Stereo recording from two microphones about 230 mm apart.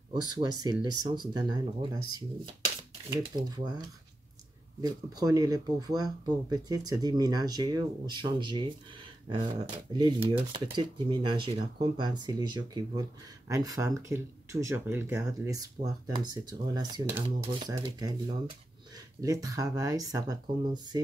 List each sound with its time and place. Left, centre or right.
0.1 s speech: centre
4.8 s speech: centre
19.2 s speech: centre